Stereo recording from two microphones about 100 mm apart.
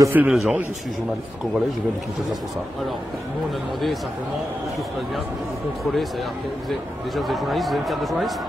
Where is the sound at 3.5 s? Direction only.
Centre (ahead or behind).